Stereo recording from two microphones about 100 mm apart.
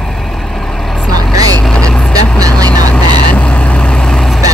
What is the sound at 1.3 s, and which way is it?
Vehicle, 40° right (ahead or behind).